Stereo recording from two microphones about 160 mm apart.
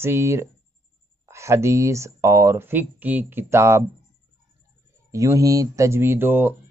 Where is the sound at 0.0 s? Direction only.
15° right (ahead or behind).